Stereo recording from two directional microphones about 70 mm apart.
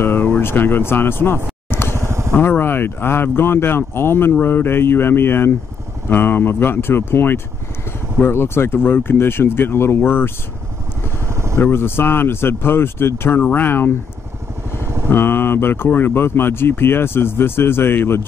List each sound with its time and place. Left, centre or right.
0.0 s speech: left
1.7 s vehicle: left
2.0 s vehicle: right
2.3 s speech: left
11.2 s vehicle: right
11.6 s speech: left
15.0 s speech: left